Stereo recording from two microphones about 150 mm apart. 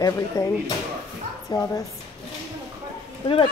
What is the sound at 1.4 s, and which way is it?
Speech, 25° left (ahead or behind).